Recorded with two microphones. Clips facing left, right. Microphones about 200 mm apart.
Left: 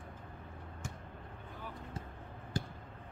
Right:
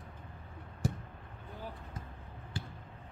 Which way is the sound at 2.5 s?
40° left (ahead or behind).